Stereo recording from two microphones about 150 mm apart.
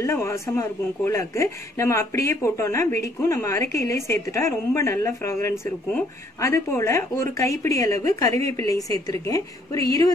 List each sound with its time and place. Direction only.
0.0 s a man's voice: 20° left (ahead or behind)